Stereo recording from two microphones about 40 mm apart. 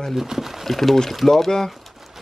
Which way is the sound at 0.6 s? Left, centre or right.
Centre.